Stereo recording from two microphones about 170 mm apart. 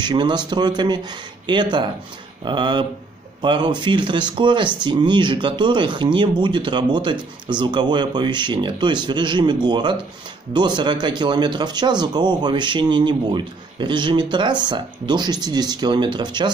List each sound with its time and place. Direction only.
0.0 s speech: 25° right (ahead or behind)